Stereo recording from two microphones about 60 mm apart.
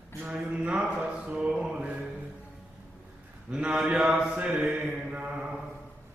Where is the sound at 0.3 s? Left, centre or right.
Right.